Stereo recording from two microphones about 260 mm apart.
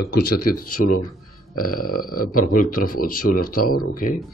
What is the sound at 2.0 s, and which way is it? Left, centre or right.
Speech, left.